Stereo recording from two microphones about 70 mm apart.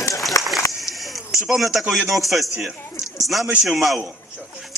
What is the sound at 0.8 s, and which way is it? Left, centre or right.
Speech, centre.